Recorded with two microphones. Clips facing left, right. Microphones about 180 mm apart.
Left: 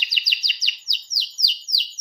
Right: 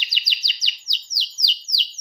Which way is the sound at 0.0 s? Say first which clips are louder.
Even; 25° right (ahead or behind).